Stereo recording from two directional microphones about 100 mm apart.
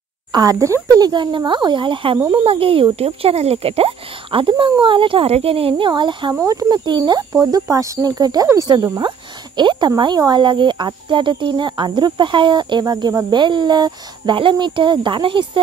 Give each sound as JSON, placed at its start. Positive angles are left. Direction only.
{"t": 0.3, "sound": "speech", "side_deg": -35}
{"t": 1.0, "sound": "speech", "side_deg": -50}
{"t": 2.3, "sound": "speech", "side_deg": -70}
{"t": 5.9, "sound": "speech", "side_deg": -50}
{"t": 6.4, "sound": "speech", "side_deg": -35}
{"t": 6.8, "sound": "speech", "side_deg": -50}